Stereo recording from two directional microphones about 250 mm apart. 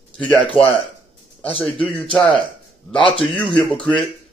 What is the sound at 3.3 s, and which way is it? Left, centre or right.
Speech, centre.